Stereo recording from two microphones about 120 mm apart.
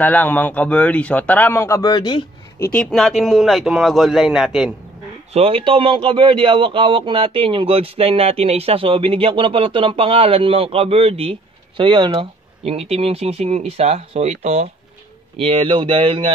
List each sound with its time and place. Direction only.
0.0 s speech: 15° left (ahead or behind); by 2.2 s 40° left (ahead or behind)
2.6 s speech: 15° left (ahead or behind)
2.9 s a man's voice: centre (ahead or behind)
5.3 s speech: 55° right (ahead or behind)
15.4 s speech: 50° right (ahead or behind)